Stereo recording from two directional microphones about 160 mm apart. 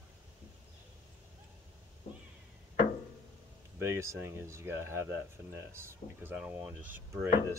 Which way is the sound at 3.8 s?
20° right (ahead or behind).